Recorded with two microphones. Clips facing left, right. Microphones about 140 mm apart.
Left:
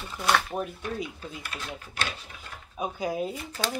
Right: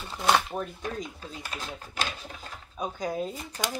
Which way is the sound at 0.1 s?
20° right (ahead or behind).